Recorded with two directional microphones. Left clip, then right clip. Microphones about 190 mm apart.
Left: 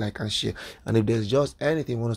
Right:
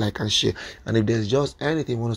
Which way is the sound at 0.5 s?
15° left (ahead or behind).